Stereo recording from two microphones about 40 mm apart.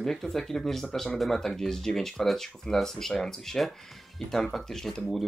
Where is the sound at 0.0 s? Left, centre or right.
Centre.